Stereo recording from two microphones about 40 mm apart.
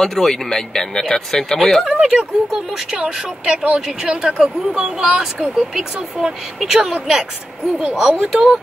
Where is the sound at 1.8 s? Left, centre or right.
Centre.